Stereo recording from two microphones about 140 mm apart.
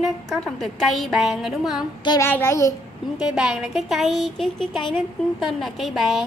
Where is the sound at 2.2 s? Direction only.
15° left (ahead or behind).